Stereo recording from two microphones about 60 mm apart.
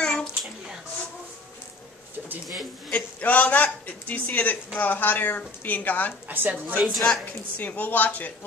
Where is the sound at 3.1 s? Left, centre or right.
Left.